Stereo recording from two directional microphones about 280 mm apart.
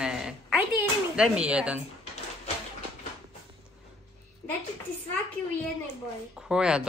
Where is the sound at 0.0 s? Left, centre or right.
Centre.